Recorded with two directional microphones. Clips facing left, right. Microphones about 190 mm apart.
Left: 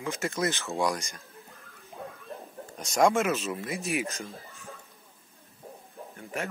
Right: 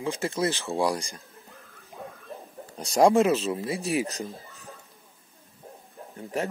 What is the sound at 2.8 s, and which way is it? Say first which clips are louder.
Speech: right 4 dB; 35° right (ahead or behind).